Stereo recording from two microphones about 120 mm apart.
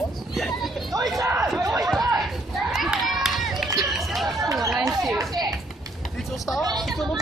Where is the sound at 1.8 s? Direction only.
Centre (ahead or behind).